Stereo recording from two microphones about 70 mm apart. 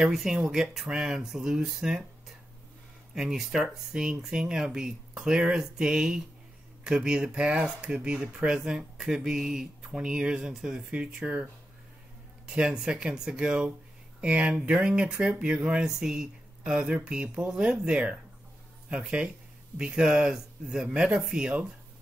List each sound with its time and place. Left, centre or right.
0.1 s speech: centre
3.2 s speech: centre
12.4 s speech: centre